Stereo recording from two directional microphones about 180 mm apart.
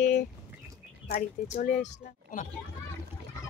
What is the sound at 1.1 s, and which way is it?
Speech, 50° left (ahead or behind).